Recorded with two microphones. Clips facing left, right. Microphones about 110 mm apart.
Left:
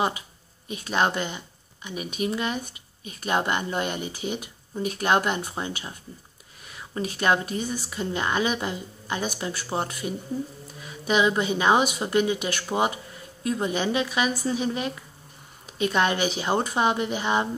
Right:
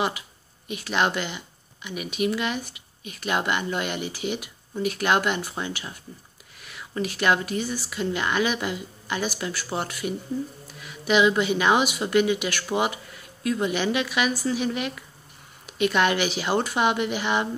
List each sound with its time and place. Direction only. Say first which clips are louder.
0.7 s speech: even; 35° left (ahead or behind)
6.6 s a sound: right 1 dB; 30° left (ahead or behind)
7.0 s speech: even; 30° left (ahead or behind)